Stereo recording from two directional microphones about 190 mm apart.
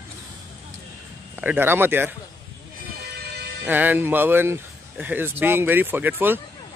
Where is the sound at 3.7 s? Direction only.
10° right (ahead or behind).